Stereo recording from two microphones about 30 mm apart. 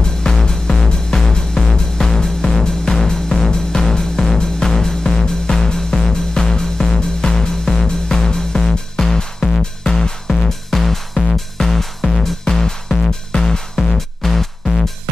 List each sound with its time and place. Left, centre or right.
0.0 s music: left
10.7 s music: centre